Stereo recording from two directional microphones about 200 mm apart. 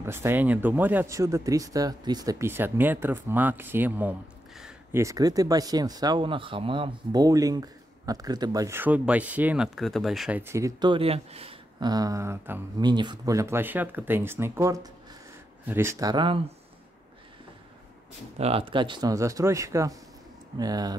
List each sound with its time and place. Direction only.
0.0 s speech: 10° right (ahead or behind)
5.0 s speech: 15° right (ahead or behind)
12.7 s speech: 20° right (ahead or behind)
18.4 s speech: 30° right (ahead or behind)